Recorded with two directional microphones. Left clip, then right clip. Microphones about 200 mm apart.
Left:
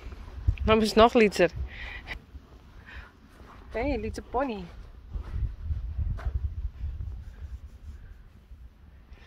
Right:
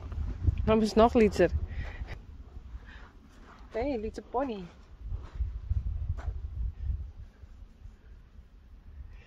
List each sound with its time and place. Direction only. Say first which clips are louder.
0.6 s speech: left 4 dB; 5° right (ahead or behind)
3.7 s speech: left 2 dB; 15° left (ahead or behind)